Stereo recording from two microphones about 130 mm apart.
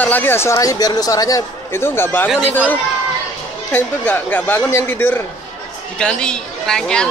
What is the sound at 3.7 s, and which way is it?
A woman's voice, 15° left (ahead or behind).